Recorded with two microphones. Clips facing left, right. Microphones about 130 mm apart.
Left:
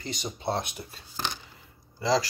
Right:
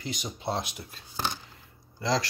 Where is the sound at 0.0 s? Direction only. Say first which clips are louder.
Left 1 dB; centre (ahead or behind).